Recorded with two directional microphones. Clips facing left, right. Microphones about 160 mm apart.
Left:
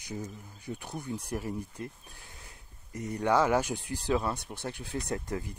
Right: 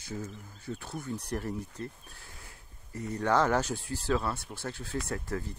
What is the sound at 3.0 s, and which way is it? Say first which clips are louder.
Speech: left 1 dB; 15° left (ahead or behind).